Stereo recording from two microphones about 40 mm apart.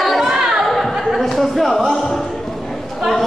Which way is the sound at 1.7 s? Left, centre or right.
Centre.